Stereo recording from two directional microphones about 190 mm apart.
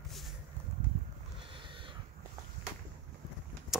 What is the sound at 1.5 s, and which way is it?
Cat, 25° right (ahead or behind).